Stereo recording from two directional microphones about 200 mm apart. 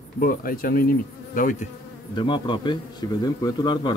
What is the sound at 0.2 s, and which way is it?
Bee, 45° left (ahead or behind).